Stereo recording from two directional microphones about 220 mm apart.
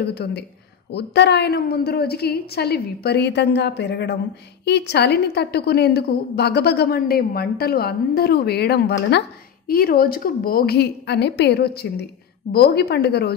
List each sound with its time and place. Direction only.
0.0 s a woman's voice: 50° left (ahead or behind)